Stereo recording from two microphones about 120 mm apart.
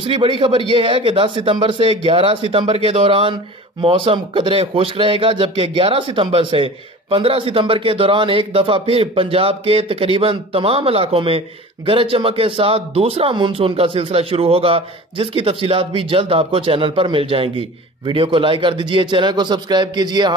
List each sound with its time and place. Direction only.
0.0 s a man's voice: 45° right (ahead or behind)